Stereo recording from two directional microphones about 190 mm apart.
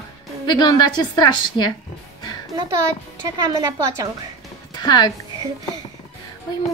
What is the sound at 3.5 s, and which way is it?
Speech, 15° right (ahead or behind).